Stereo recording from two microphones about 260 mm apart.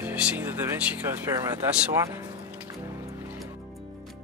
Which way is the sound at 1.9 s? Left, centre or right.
Centre.